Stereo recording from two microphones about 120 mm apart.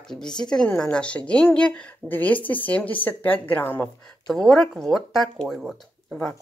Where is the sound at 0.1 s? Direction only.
5° left (ahead or behind).